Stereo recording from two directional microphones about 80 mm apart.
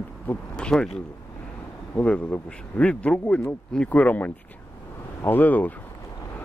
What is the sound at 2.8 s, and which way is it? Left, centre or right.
Speech, centre.